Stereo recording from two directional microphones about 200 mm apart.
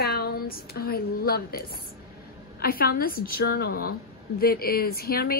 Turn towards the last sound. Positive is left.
turn(degrees=50)  # may be behind; listen again after turning